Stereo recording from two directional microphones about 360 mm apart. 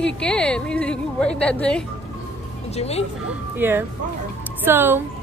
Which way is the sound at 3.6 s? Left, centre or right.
Centre.